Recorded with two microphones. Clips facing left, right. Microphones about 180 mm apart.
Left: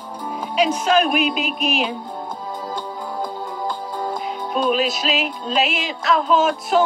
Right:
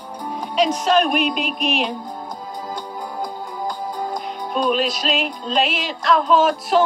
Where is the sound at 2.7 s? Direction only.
40° right (ahead or behind).